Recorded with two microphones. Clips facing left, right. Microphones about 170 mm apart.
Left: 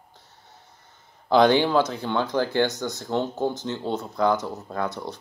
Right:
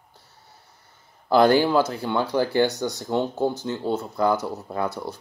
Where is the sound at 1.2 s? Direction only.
5° right (ahead or behind).